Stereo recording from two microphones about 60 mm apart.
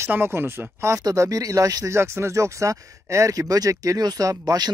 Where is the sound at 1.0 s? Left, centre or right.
Right.